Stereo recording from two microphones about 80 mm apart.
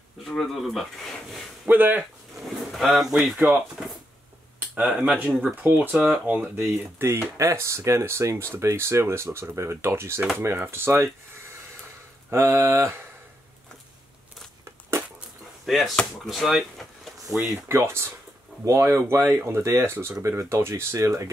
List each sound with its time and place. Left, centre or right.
0.2 s speech: centre
1.7 s speech: right
2.3 s livestock: centre
4.8 s speech: centre
5.9 s speech: centre
6.2 s speech: right
12.3 s speech: right
14.6 s crumpling: right
15.6 s speech: centre
17.3 s speech: right